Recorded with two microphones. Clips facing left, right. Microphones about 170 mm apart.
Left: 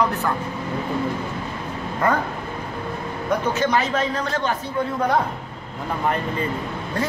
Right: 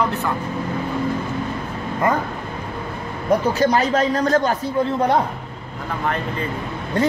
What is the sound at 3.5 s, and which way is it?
Speech, 35° right (ahead or behind).